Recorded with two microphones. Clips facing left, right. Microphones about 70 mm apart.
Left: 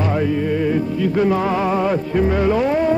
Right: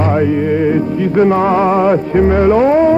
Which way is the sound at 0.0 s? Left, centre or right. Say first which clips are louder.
Right 6 dB; right.